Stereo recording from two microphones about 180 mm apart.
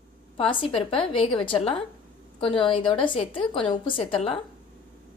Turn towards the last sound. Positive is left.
turn(degrees=30)  # may be behind; listen again after turning